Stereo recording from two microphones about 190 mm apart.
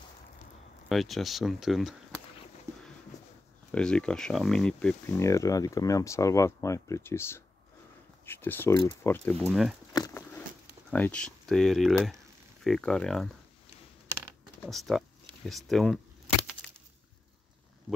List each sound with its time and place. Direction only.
0.8 s speech: centre (ahead or behind)
2.7 s a sound: 15° right (ahead or behind)
3.7 s speech: 5° left (ahead or behind)
5.1 s speech: 15° left (ahead or behind)
9.5 s speech: centre (ahead or behind)
9.9 s a sound: 15° left (ahead or behind)
10.9 s speech: 5° left (ahead or behind)
14.6 s speech: centre (ahead or behind)